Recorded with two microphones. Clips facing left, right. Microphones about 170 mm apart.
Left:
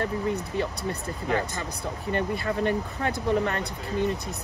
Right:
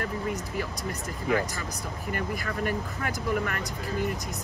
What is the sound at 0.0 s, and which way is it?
Speech, 25° left (ahead or behind).